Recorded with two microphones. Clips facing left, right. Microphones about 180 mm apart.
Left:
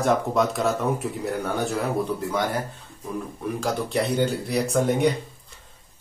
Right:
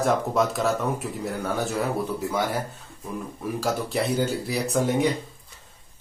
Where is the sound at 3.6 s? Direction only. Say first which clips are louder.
Left 1 dB; 5° right (ahead or behind).